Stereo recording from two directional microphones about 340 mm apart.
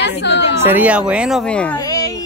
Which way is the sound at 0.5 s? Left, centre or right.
Centre.